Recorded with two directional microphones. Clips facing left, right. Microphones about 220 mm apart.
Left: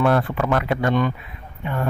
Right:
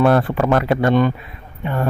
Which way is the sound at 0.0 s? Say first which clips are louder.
Right 4 dB; 35° right (ahead or behind).